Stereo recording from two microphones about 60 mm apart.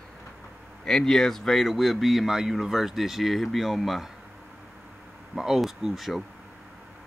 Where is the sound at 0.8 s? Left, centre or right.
Centre.